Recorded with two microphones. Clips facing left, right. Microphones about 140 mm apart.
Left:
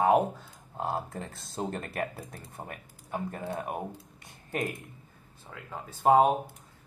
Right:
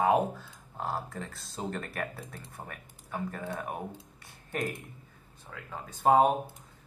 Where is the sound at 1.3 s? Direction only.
Centre (ahead or behind).